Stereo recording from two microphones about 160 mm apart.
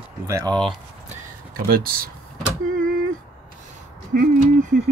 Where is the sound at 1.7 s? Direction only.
65° right (ahead or behind).